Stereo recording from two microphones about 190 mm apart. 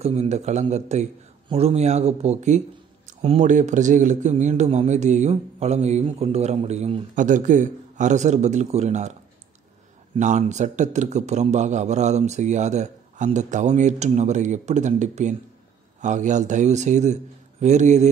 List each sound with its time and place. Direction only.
0.0 s a man's voice: 35° right (ahead or behind)
10.1 s a man's voice: 40° right (ahead or behind)